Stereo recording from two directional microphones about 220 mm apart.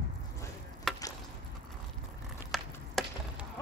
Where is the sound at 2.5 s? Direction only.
Centre (ahead or behind).